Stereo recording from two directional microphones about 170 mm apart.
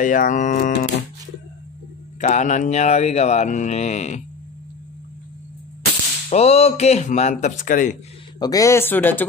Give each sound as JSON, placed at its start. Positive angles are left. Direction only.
{"t": 0.0, "sound": "mantra", "side_deg": 50}
{"t": 2.1, "sound": "mantra", "side_deg": 45}
{"t": 6.3, "sound": "speech", "side_deg": 35}
{"t": 8.4, "sound": "speech", "side_deg": 20}